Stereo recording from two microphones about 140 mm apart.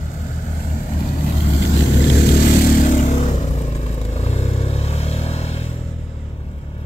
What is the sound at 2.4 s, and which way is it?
Vehicle, 90° left.